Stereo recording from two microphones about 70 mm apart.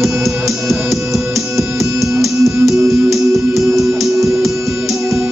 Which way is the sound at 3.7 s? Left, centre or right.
Right.